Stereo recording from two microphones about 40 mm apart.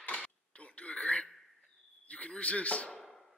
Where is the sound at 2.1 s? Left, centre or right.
Left.